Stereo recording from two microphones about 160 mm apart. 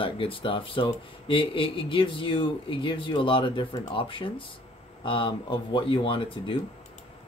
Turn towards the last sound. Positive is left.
turn(degrees=30)  # may be behind; listen again after turning